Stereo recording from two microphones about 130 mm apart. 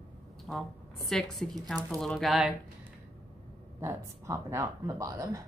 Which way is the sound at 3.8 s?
20° right (ahead or behind).